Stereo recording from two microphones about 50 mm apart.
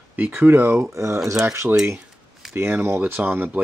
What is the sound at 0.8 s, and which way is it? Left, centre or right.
Speech, right.